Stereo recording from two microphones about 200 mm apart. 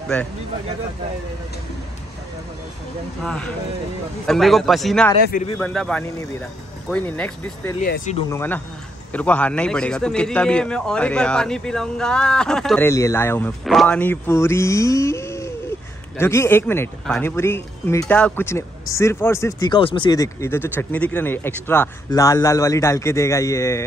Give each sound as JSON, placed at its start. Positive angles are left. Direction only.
{"t": 4.3, "sound": "a man's voice", "side_deg": 0}
{"t": 7.8, "sound": "speech", "side_deg": 40}
{"t": 8.3, "sound": "a man's voice", "side_deg": 10}